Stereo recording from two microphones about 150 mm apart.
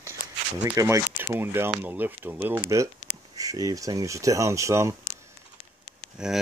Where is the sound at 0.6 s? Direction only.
20° right (ahead or behind).